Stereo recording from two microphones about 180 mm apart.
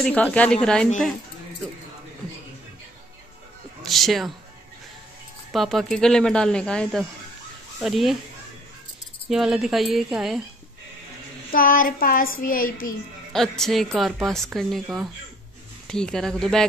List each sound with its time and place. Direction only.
0.0 s speech: 5° left (ahead or behind)
3.8 s speech: centre (ahead or behind)
5.5 s speech: centre (ahead or behind)
9.3 s speech: centre (ahead or behind)
11.5 s child singing: 50° left (ahead or behind)
13.3 s speech: centre (ahead or behind)